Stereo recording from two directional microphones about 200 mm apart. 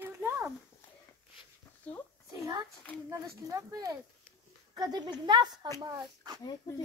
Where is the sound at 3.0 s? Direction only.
15° right (ahead or behind).